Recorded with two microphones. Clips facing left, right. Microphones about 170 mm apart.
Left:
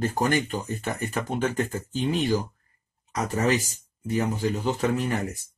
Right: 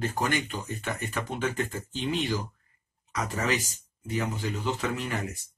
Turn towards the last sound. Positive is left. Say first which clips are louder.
# left 6 dB
turn(degrees=40)  # may be behind; listen again after turning